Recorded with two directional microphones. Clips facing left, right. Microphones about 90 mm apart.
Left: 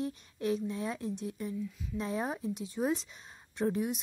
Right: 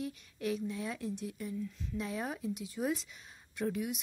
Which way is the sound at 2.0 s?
30° left (ahead or behind).